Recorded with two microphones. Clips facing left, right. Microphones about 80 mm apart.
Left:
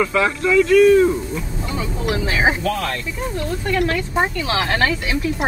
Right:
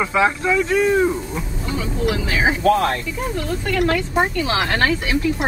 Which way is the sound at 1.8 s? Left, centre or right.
Left.